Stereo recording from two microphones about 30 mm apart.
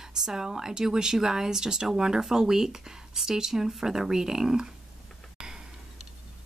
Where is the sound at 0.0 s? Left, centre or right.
Centre.